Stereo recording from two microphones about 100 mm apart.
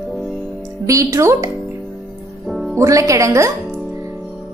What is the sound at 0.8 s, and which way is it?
Speech, 30° right (ahead or behind).